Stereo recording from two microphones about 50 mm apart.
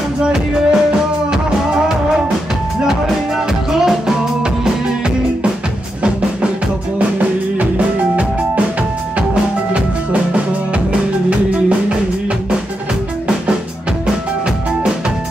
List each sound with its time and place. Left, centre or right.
0.2 s music: centre
3.8 s music: centre
7.0 s music: right
10.9 s music: right